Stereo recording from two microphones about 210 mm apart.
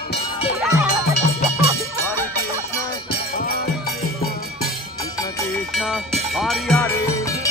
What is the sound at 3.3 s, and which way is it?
Music, 45° left (ahead or behind).